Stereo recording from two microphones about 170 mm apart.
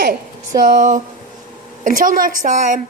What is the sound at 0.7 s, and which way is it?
A woman's voice, 50° right (ahead or behind).